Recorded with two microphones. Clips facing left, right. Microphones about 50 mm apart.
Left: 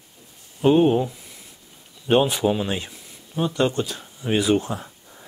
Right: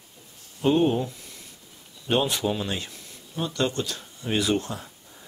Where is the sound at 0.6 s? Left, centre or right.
Centre.